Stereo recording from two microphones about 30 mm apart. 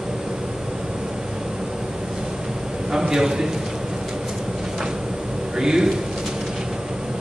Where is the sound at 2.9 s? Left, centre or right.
Right.